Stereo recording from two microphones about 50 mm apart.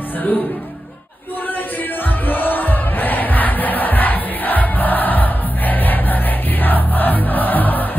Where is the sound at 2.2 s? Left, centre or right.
Left.